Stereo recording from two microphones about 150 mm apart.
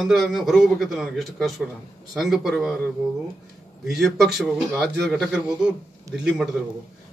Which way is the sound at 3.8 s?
Centre (ahead or behind).